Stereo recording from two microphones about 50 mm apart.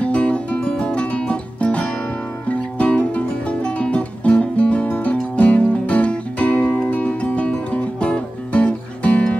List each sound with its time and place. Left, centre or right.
0.0 s music: left